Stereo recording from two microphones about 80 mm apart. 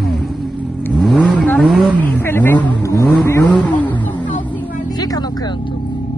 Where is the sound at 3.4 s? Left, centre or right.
Centre.